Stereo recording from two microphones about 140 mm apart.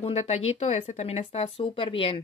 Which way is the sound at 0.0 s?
50° left (ahead or behind).